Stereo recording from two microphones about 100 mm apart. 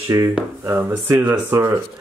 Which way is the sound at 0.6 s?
20° right (ahead or behind).